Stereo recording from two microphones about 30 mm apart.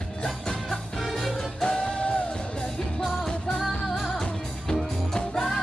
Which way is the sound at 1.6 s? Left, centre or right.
Left.